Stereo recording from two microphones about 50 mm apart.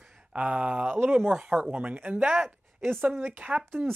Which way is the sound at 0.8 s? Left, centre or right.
Right.